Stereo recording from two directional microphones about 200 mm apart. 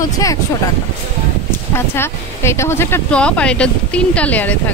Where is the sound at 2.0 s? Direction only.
10° left (ahead or behind).